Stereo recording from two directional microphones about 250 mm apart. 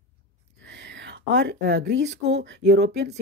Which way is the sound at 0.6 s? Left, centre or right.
Right.